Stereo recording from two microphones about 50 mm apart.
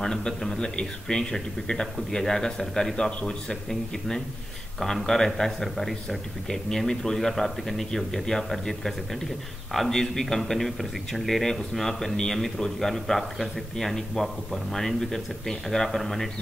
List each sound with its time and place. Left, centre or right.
0.0 s speech: centre
3.1 s a man's voice: left
3.4 s speech: centre